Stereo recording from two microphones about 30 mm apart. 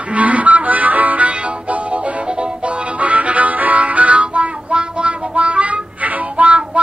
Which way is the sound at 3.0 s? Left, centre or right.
Right.